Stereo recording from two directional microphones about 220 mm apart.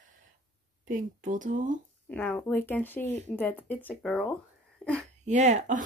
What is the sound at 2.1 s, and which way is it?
Speech, 5° left (ahead or behind).